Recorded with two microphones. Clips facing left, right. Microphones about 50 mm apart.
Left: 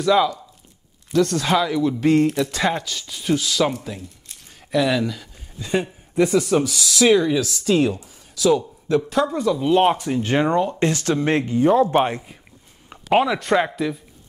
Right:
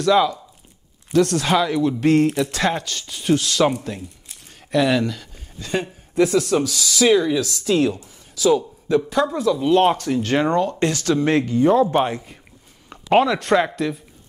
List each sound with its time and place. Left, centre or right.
1.1 s speech: centre
3.9 s speech: right
4.7 s speech: centre
5.0 s speech: centre
9.9 s speech: centre
10.9 s speech: left
11.7 s speech: centre